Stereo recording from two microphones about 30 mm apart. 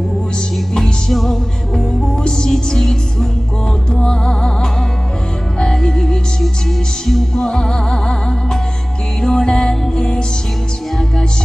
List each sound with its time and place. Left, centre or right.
0.7 s music: centre
2.2 s music: left
7.3 s music: left